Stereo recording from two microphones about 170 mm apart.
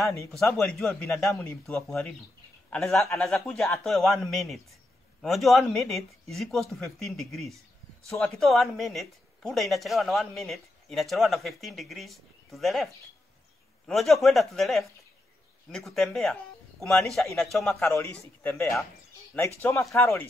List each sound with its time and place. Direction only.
0.5 s a woman's voice: 5° left (ahead or behind)
3.2 s a woman's voice: 5° left (ahead or behind)
18.4 s speech: 15° left (ahead or behind)